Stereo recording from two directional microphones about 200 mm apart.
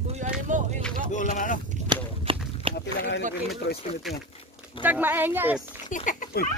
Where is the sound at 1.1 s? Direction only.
40° left (ahead or behind).